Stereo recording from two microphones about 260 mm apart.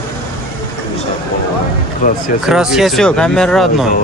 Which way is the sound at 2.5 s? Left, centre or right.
Centre.